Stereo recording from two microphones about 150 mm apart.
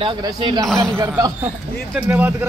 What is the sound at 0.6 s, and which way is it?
Speech, 5° left (ahead or behind).